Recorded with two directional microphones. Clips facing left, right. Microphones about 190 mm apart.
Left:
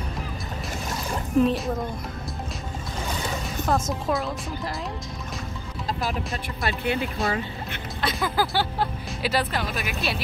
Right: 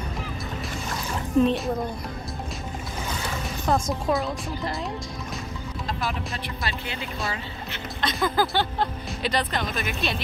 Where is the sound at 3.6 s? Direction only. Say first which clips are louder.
Right 1 dB; centre (ahead or behind).